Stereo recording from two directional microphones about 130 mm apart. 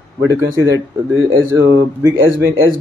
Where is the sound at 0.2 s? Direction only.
25° right (ahead or behind).